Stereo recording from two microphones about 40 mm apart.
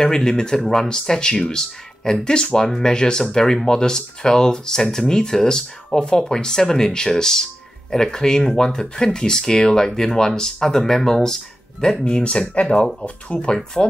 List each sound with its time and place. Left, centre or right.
0.0 s speech: centre
12.0 s speech: left